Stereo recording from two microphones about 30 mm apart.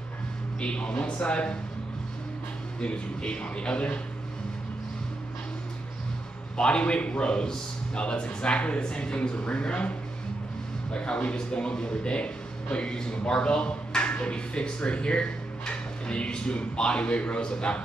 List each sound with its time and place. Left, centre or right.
0.6 s speech: left
2.8 s speech: left
6.5 s a man's voice: left
6.8 s speech: left
10.9 s speech: left
12.9 s speech: left